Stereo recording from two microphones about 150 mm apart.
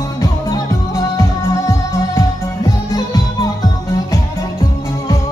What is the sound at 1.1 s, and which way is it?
Music, 20° left (ahead or behind).